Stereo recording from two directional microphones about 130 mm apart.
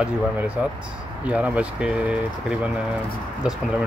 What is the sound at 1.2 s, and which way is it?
Speech, 10° right (ahead or behind).